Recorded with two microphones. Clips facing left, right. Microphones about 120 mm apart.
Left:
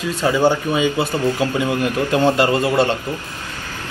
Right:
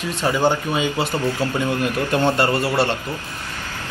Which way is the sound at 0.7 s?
15° left (ahead or behind).